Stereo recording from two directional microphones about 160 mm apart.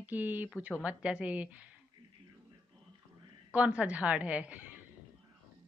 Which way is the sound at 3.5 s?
5° right (ahead or behind).